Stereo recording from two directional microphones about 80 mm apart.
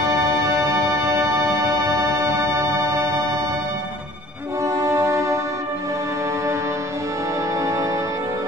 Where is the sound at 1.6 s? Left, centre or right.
Right.